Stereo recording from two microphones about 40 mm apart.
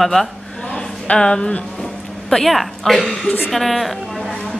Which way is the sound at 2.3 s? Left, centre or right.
Centre.